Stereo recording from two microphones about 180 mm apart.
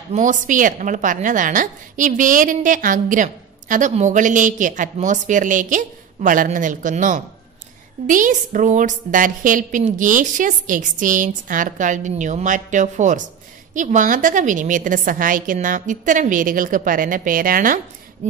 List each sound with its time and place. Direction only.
0.1 s a woman's voice: 45° right (ahead or behind)